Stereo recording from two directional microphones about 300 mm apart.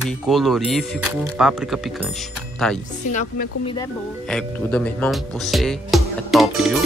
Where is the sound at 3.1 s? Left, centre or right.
Left.